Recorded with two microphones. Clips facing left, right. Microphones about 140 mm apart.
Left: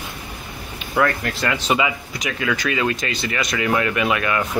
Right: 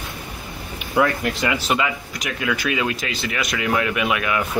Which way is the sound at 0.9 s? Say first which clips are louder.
Right 1 dB; 15° right (ahead or behind).